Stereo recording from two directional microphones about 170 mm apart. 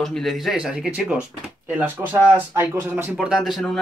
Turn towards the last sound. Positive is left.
turn(degrees=0)  # may be behind; listen again after turning